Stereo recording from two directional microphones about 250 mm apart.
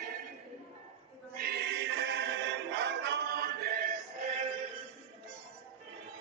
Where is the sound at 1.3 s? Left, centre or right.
Right.